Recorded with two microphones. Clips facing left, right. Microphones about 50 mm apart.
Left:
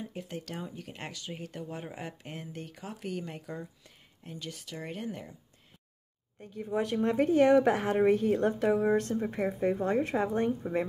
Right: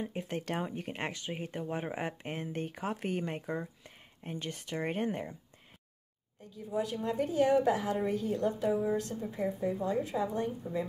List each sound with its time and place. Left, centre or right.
0.0 s speech: right
6.5 s a woman's voice: left